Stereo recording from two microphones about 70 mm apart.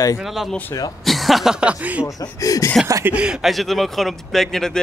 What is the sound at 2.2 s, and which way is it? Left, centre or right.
Speech, left.